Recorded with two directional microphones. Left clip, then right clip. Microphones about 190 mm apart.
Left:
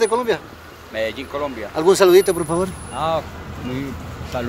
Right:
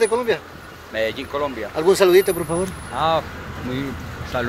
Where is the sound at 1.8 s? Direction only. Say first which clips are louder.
Left 2 dB; 25° left (ahead or behind).